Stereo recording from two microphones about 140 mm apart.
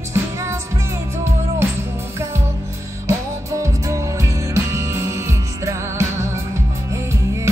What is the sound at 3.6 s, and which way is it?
Music, 20° right (ahead or behind).